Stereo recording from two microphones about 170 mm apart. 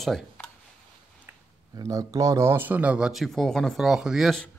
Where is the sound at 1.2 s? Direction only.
20° right (ahead or behind); by 4.5 s centre (ahead or behind).